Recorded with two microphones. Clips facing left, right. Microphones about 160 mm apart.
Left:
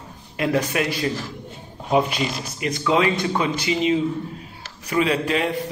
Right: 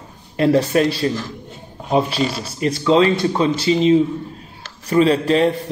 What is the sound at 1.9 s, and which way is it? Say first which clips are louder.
Speech: right 2 dB; 30° right (ahead or behind).